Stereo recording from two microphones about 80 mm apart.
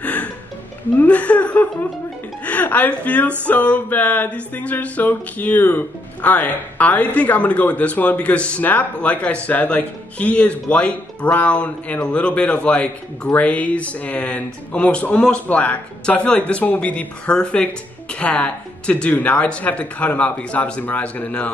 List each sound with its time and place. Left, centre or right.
0.0 s music: left
0.9 s speech: centre
2.4 s a sound: centre